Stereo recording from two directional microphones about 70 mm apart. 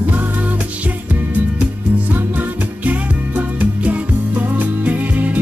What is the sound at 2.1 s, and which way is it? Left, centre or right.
Music, right.